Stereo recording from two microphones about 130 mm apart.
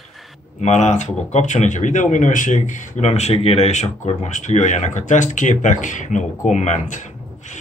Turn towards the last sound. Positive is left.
turn(degrees=70)  # may be behind; listen again after turning